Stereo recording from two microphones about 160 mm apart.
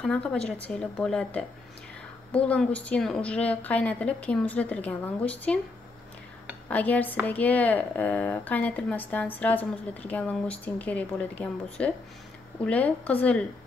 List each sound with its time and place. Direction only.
0.0 s a woman's voice: 5° left (ahead or behind)
6.7 s a woman's voice: 10° left (ahead or behind)